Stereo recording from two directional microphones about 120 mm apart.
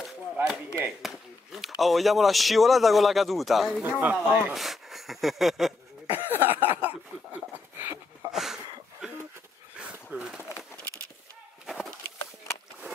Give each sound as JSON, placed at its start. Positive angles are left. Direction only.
{"t": 0.0, "sound": "chop", "side_deg": -10}
{"t": 1.8, "sound": "a man's voice", "side_deg": 0}
{"t": 3.8, "sound": "speech", "side_deg": -15}
{"t": 4.6, "sound": "a sound", "side_deg": 0}
{"t": 6.0, "sound": "cough", "side_deg": -15}
{"t": 6.7, "sound": "a sound", "side_deg": -15}
{"t": 8.3, "sound": "a sound", "side_deg": -5}
{"t": 9.8, "sound": "dog", "side_deg": -10}
{"t": 11.6, "sound": "wood", "side_deg": 0}